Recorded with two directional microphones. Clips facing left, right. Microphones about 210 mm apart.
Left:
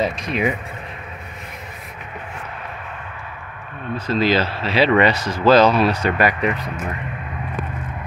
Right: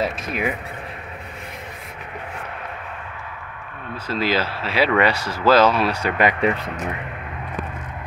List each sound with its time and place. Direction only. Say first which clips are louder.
0.0 s speech: left 3 dB; 5° right (ahead or behind)
3.9 s speech: left 4 dB; 10° right (ahead or behind)
4.9 s speech: left 3 dB; 20° left (ahead or behind)
5.5 s speech: left 2 dB; 5° right (ahead or behind)
6.2 s speech: right 4 dB; 30° right (ahead or behind)